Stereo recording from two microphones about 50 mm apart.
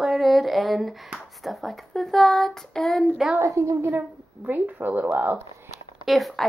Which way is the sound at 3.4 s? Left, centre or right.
Right.